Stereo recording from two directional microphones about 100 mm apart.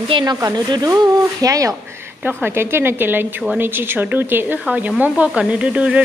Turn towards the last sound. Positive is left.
turn(degrees=-10)  # may be behind; listen again after turning